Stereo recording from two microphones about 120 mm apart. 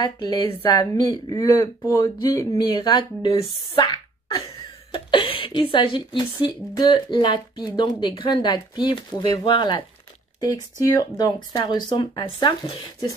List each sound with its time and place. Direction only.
0.0 s speech: 40° left (ahead or behind)
1.3 s speech: 25° left (ahead or behind)
2.7 s a woman's voice: 40° left (ahead or behind)
11.2 s speech: 40° left (ahead or behind)